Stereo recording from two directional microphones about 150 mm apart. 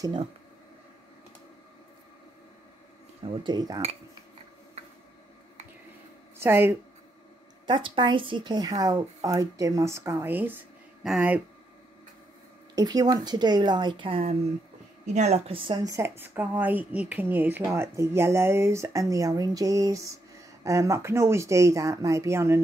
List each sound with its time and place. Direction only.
0.0 s speech: 30° right (ahead or behind)
3.4 s speech: 25° right (ahead or behind)
6.3 s speech: 15° right (ahead or behind)
7.6 s speech: 35° right (ahead or behind); by 11.4 s 10° right (ahead or behind)
12.7 s speech: 25° right (ahead or behind)